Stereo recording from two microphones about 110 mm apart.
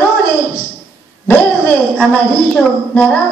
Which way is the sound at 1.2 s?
15° left (ahead or behind).